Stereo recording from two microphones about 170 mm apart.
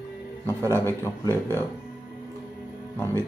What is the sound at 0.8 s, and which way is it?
Speech, 15° left (ahead or behind).